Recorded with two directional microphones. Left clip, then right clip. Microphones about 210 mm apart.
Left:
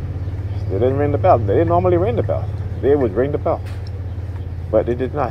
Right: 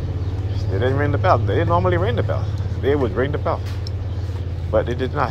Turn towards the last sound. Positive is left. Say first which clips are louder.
# left 2 dB
turn(degrees=40)  # may be behind; listen again after turning